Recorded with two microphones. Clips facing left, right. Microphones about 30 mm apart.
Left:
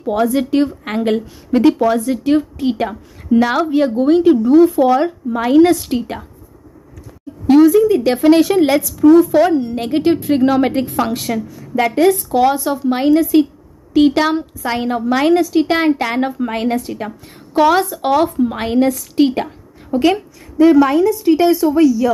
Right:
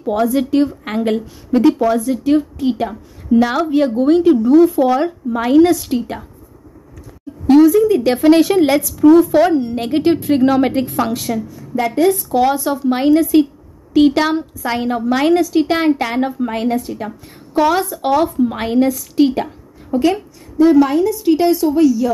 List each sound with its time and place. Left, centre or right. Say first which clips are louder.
0.1 s a woman's voice: left 1 dB; centre
0.5 s a woman's voice: even; centre
5.6 s a woman's voice: left 1 dB; centre
7.4 s a woman's voice: even; centre
9.0 s a woman's voice: even; centre
11.1 s a woman's voice: even; centre
16.2 s a woman's voice: even; centre
17.8 s a woman's voice: left 1 dB; centre
20.9 s a woman's voice: left 1 dB; centre